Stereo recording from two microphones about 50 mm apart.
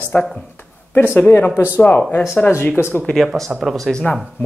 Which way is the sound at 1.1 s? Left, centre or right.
Left.